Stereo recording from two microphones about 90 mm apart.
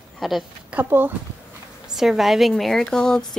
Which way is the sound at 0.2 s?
Centre (ahead or behind).